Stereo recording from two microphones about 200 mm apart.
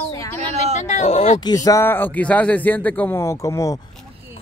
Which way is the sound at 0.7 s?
35° left (ahead or behind).